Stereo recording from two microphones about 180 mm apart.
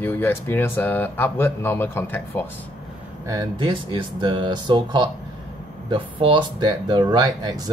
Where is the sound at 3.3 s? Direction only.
25° right (ahead or behind).